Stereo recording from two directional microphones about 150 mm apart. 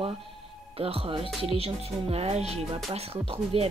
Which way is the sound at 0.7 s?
40° right (ahead or behind).